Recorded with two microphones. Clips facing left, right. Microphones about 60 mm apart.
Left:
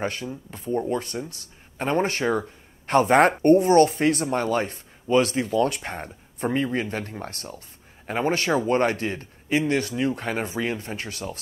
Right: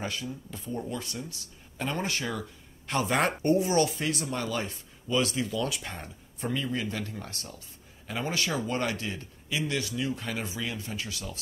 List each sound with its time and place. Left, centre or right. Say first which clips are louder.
0.0 s speech: left 6 dB; left